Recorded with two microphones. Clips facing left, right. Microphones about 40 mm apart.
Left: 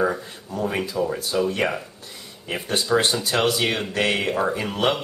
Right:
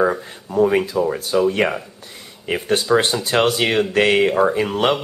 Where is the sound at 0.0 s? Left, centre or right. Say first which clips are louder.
Right 4 dB; centre.